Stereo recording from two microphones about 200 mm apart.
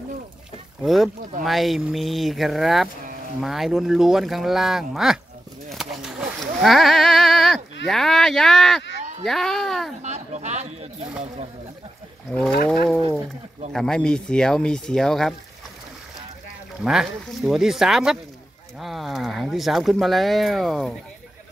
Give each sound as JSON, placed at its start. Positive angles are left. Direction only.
{"t": 0.8, "sound": "speech", "side_deg": 0}
{"t": 5.7, "sound": "a sound", "side_deg": 0}
{"t": 7.8, "sound": "speech", "side_deg": 0}
{"t": 10.0, "sound": "speech", "side_deg": -35}
{"t": 12.3, "sound": "speech", "side_deg": 5}
{"t": 13.7, "sound": "speech", "side_deg": 5}
{"t": 16.8, "sound": "speech", "side_deg": -5}